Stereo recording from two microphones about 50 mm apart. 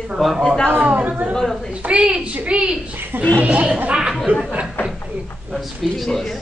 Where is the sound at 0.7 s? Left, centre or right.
Right.